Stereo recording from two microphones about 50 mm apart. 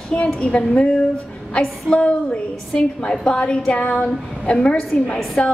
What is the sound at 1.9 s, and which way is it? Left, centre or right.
A woman's voice, left.